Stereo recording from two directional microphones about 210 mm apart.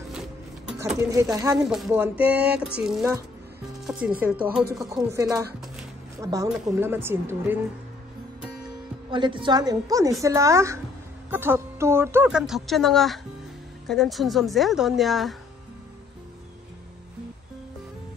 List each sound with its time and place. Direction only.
1.0 s a woman's voice: 15° right (ahead or behind)
1.6 s speech: centre (ahead or behind)
4.8 s a woman's voice: 15° right (ahead or behind)
9.1 s a woman's voice: 25° right (ahead or behind); by 15.3 s centre (ahead or behind)